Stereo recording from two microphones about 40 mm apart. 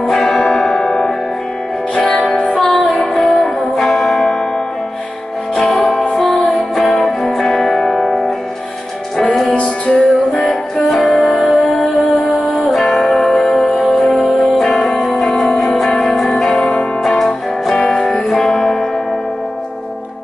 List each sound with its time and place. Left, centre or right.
0.1 s church bell: centre
0.7 s church bell: centre
2.0 s music: left
2.5 s music: centre
5.6 s music: centre
9.5 s music: left
10.8 s music: centre
12.7 s music: centre